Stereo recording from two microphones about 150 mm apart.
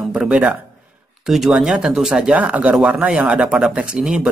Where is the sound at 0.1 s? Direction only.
5° right (ahead or behind).